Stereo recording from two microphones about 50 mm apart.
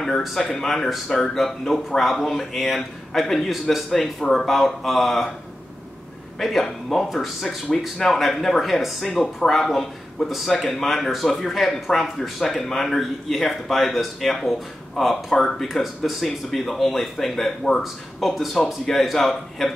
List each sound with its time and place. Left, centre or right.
0.2 s speech: centre
6.4 s speech: centre
7.4 s speech: centre
8.0 s speech: centre